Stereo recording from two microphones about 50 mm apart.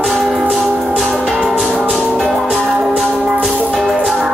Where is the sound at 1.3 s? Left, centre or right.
Centre.